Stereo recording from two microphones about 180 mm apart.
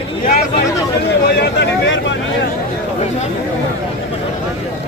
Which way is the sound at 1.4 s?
65° left (ahead or behind).